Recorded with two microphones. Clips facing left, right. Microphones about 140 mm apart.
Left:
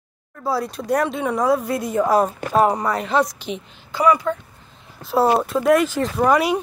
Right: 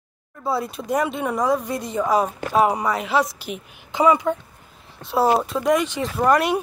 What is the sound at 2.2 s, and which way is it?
Speech, centre (ahead or behind).